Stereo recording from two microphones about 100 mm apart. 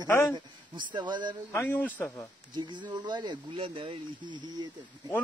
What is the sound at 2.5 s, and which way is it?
Speech, 50° right (ahead or behind).